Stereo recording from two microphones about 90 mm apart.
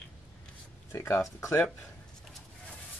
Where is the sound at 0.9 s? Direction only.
30° left (ahead or behind).